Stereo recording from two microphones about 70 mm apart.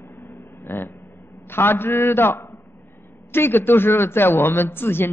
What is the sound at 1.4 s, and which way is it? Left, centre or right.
A man's voice, left.